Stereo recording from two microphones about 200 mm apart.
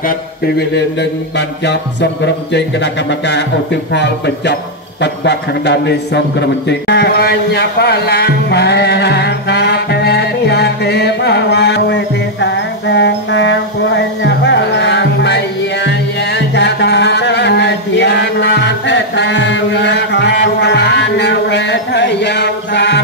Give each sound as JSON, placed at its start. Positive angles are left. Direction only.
{"t": 1.6, "sound": "speech", "side_deg": 60}
{"t": 6.9, "sound": "music", "side_deg": 55}